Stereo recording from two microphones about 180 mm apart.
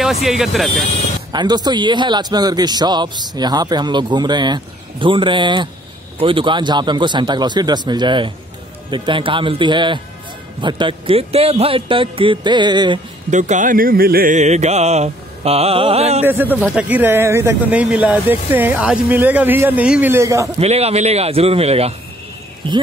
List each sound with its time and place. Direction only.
0.0 s speech: centre (ahead or behind)
1.3 s speech: 25° right (ahead or behind)
13.3 s speech: 40° right (ahead or behind)
16.2 s speech: 10° right (ahead or behind)
20.5 s speech: 35° right (ahead or behind)